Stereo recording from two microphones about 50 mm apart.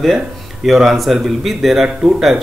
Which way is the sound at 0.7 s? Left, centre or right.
Centre.